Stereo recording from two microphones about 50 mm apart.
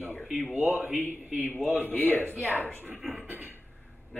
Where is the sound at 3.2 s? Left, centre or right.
Right.